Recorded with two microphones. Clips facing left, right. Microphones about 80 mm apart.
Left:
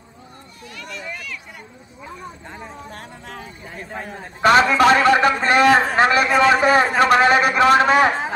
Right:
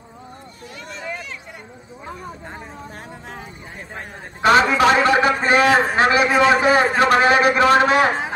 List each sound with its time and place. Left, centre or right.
0.7 s vehicle: right
2.9 s music: centre
4.0 s a man's voice: centre